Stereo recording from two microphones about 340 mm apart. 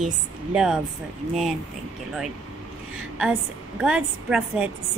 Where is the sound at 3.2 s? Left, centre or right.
Centre.